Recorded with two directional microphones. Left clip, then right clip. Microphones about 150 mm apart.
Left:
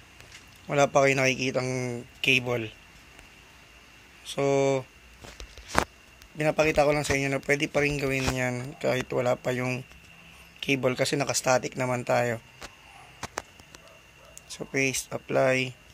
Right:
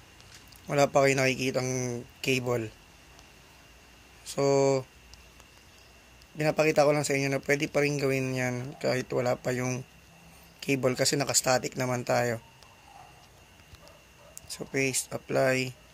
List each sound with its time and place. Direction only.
0.7 s a man's voice: 5° right (ahead or behind)
4.2 s speech: 10° right (ahead or behind)
6.3 s a man's voice: 10° right (ahead or behind)
6.8 s speech: 30° right (ahead or behind)
7.1 s speech: 10° right (ahead or behind)
7.8 s speech: 25° right (ahead or behind)
8.5 s speech: 5° right (ahead or behind)
14.5 s speech: centre (ahead or behind)